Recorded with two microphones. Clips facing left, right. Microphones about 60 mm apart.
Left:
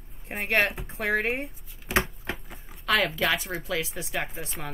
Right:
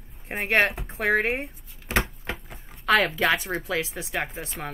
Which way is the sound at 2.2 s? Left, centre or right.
Centre.